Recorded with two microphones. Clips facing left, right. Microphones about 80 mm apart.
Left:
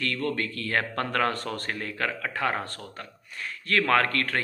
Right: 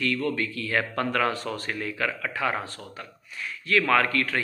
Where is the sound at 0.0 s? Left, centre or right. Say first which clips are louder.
Right 2 dB; left.